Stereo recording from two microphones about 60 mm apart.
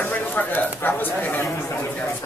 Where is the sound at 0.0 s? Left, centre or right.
Left.